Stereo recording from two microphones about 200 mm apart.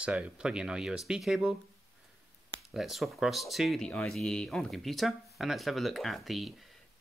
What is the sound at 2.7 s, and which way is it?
Speech, centre (ahead or behind).